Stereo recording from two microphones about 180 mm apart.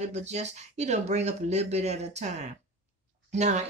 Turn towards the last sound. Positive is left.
turn(degrees=-40)  # may be behind; listen again after turning